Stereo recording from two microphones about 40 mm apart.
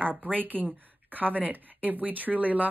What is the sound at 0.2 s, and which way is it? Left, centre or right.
Speech, right.